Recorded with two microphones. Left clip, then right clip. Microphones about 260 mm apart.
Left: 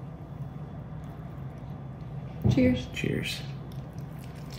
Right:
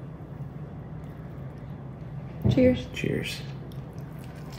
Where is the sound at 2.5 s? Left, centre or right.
Centre.